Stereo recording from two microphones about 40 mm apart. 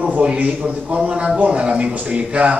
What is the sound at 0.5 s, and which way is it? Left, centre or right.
A man's voice, right.